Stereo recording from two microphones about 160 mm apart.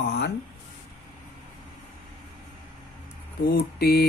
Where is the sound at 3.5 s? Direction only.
75° left (ahead or behind).